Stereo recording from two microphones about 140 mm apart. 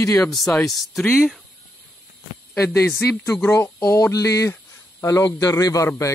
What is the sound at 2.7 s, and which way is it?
Speech, 10° left (ahead or behind).